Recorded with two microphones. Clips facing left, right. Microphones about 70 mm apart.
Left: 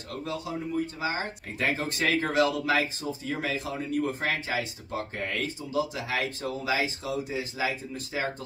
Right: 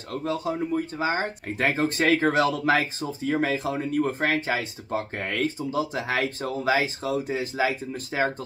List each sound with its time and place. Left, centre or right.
0.1 s speech: right